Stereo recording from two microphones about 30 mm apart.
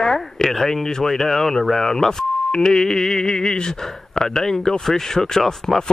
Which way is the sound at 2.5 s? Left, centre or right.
Left.